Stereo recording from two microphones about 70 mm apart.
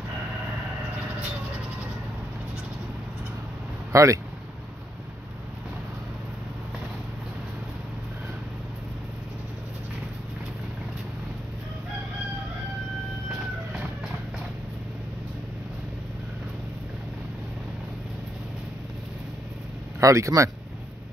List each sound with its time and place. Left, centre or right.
3.9 s speech: right
20.0 s speech: right